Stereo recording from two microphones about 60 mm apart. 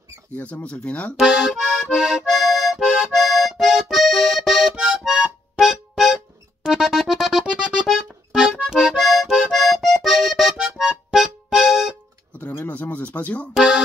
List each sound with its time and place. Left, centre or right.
0.4 s speech: left
1.1 s accordion: centre
4.7 s music: centre
7.5 s music: centre
8.6 s accordion: centre
10.8 s music: centre
12.3 s music: left
12.6 s a sound: left
13.5 s music: centre